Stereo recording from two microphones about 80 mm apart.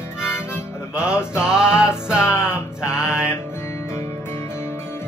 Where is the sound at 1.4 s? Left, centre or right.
Centre.